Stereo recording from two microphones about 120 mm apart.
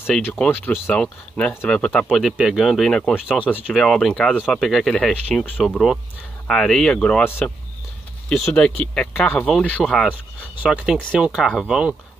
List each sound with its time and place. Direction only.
0.3 s speech: 15° left (ahead or behind)
10.6 s speech: 10° right (ahead or behind)